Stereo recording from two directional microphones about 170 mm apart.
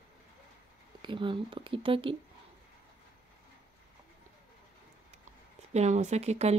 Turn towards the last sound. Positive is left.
turn(degrees=-40)  # may be behind; listen again after turning